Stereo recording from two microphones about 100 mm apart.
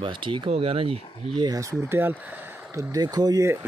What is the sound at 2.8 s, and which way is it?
Speech, 35° right (ahead or behind).